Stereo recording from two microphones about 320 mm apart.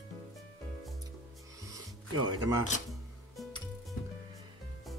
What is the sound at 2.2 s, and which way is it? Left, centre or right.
Speech, centre.